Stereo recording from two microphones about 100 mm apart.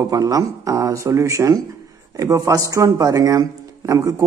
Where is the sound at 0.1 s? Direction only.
35° right (ahead or behind).